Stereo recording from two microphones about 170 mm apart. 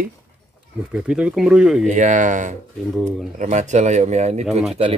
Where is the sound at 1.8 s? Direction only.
45° right (ahead or behind).